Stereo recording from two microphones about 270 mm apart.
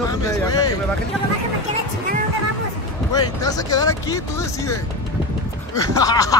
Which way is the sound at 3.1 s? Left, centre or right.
Centre.